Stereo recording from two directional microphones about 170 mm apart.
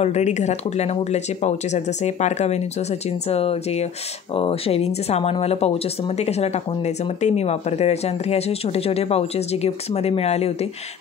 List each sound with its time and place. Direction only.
0.0 s speech: 40° left (ahead or behind)